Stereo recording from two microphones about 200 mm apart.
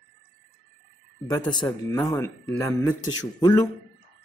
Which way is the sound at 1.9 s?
20° left (ahead or behind).